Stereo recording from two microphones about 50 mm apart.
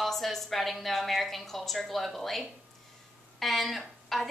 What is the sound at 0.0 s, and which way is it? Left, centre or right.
A woman's voice, centre.